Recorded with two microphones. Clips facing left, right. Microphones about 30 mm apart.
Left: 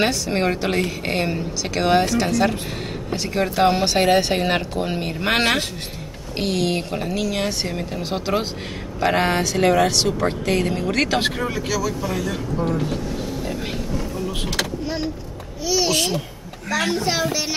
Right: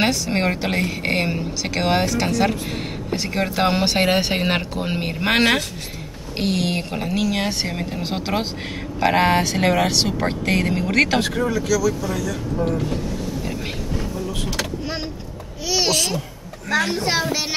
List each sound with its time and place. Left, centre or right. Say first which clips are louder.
0.0 s speech: even; centre
11.4 s speech: right 4 dB; left
17.0 s speech: even; right